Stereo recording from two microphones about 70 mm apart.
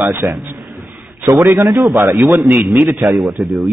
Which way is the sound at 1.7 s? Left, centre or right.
Centre.